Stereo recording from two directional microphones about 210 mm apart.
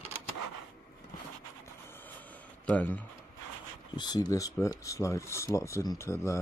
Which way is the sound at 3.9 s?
20° left (ahead or behind).